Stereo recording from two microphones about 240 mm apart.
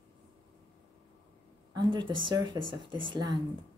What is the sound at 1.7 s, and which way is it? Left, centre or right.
Speech, centre.